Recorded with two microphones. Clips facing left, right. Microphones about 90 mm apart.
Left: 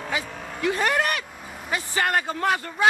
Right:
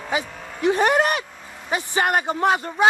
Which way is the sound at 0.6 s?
20° right (ahead or behind).